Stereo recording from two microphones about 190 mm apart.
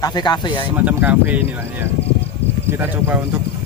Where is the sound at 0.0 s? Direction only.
20° left (ahead or behind).